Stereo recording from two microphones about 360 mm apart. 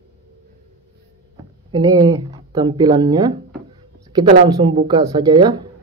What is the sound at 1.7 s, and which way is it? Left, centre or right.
Speech, centre.